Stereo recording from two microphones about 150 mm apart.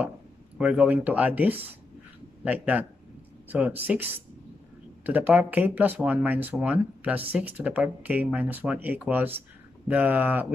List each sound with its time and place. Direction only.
0.6 s speech: 10° right (ahead or behind)